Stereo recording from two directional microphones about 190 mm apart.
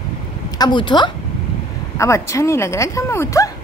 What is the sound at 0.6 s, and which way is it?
Speech, 25° left (ahead or behind).